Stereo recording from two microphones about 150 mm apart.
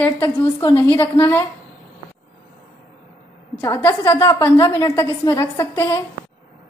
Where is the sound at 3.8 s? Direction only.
20° left (ahead or behind).